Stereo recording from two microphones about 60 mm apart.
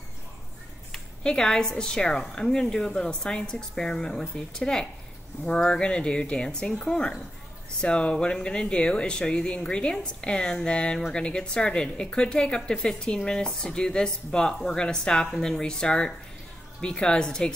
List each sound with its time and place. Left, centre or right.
0.9 s a woman's voice: centre